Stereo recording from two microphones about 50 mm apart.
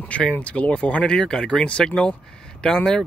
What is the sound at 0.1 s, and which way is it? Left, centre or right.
Speech, left.